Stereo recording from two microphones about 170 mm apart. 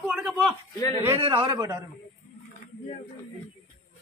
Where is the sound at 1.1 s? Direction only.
30° right (ahead or behind).